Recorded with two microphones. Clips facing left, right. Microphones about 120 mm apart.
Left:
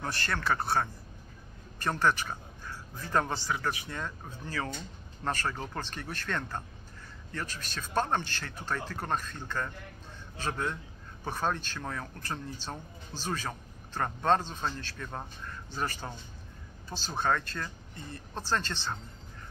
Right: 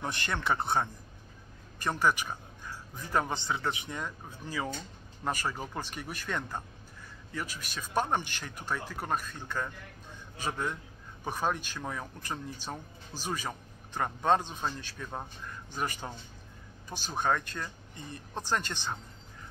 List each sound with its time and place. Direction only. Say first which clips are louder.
0.0 s speech: even; 20° right (ahead or behind)
3.3 s speech: even; 25° right (ahead or behind)